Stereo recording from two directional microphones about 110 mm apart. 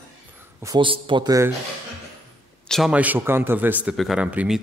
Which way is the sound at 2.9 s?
15° right (ahead or behind).